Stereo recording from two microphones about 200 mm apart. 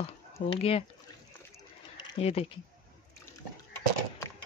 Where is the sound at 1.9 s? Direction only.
30° left (ahead or behind).